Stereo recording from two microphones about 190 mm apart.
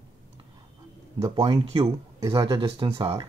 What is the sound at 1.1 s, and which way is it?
Speech, 30° right (ahead or behind).